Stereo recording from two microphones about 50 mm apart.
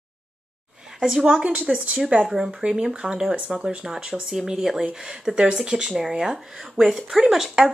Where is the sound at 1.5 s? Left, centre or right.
Right.